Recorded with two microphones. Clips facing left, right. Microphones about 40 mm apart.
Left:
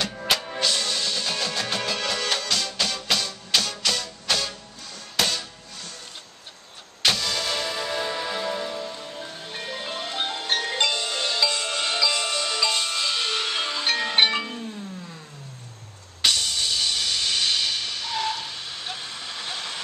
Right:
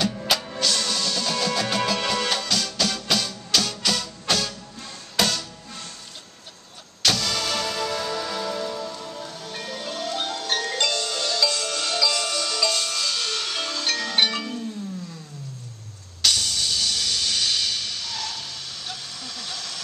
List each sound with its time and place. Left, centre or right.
0.0 s music: centre
7.0 s music: centre
16.2 s music: centre